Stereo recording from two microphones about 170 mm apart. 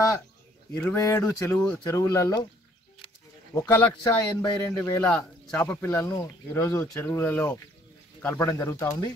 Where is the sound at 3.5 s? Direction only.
15° left (ahead or behind).